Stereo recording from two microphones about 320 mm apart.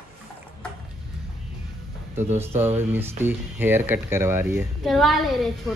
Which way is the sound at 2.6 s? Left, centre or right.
Centre.